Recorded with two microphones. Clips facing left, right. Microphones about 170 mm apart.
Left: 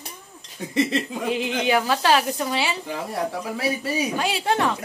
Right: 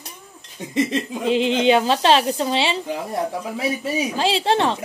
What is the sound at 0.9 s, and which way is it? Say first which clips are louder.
A woman's voice: right 4 dB; 20° right (ahead or behind).